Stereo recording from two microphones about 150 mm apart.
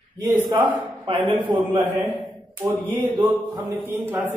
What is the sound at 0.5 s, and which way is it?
Mantra, 35° right (ahead or behind).